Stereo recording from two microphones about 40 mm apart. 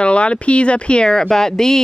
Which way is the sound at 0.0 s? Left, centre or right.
Left.